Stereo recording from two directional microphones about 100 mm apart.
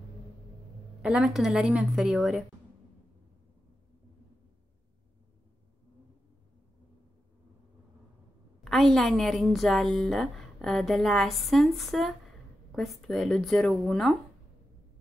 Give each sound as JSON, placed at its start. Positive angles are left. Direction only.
{"t": 1.0, "sound": "a woman's voice", "side_deg": -5}
{"t": 8.6, "sound": "a woman's voice", "side_deg": 0}